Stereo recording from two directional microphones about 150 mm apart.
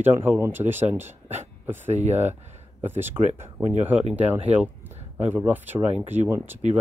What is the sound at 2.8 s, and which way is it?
Speech, 15° right (ahead or behind).